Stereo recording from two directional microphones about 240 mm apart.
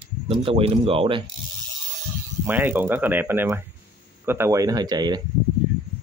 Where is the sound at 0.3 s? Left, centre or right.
Right.